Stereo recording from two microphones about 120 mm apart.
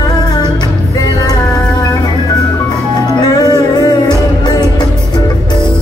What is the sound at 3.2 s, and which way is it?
Music, 35° left (ahead or behind).